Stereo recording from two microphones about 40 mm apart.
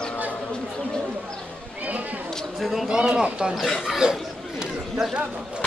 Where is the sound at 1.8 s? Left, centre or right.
Right.